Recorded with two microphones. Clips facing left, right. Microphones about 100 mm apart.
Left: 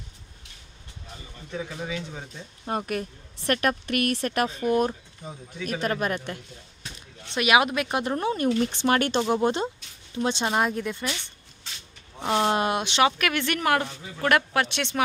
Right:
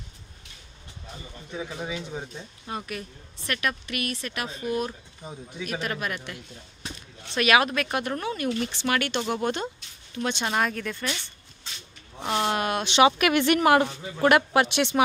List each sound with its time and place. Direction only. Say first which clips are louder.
1.5 s a woman's voice: left 1 dB; 10° right (ahead or behind)
2.6 s a woman's voice: left 6 dB; 45° left (ahead or behind)
5.2 s a woman's voice: even; 15° right (ahead or behind)
5.7 s speech: left 5 dB; 40° left (ahead or behind)
7.3 s speech: even; 15° left (ahead or behind)
12.2 s speech: left 3 dB; 20° left (ahead or behind)
12.8 s speech: right 6 dB; 5° right (ahead or behind)
13.2 s a woman's voice: right 5 dB; 15° right (ahead or behind)